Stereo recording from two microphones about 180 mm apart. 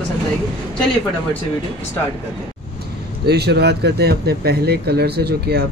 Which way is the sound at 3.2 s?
65° right (ahead or behind).